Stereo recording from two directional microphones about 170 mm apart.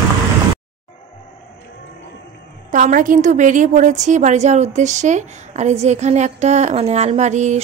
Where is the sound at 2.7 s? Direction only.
50° right (ahead or behind).